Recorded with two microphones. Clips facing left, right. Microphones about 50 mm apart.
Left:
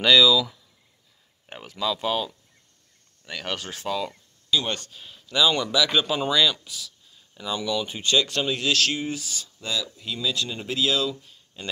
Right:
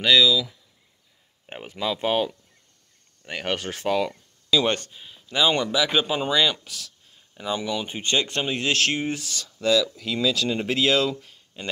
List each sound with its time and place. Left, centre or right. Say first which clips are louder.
0.0 s speech: left 1 dB; centre
1.5 s speech: even; right
4.9 s speech: even; centre
5.3 s speech: even; right
6.4 s speech: even; right
7.2 s speech: right 2 dB; right